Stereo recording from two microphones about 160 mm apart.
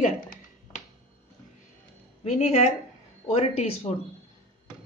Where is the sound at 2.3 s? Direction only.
45° left (ahead or behind).